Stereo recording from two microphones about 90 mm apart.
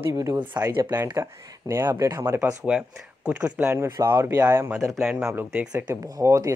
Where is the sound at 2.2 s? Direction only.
20° right (ahead or behind).